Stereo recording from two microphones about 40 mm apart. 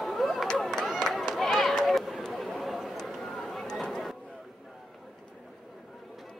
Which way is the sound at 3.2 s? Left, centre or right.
Centre.